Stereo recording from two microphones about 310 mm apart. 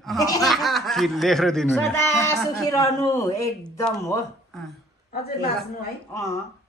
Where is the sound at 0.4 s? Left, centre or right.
Centre.